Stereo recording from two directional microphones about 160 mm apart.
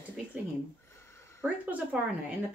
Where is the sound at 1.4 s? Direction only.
10° right (ahead or behind).